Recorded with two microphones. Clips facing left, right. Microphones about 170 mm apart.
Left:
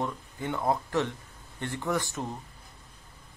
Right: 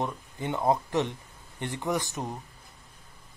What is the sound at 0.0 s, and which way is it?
Speech, 20° right (ahead or behind).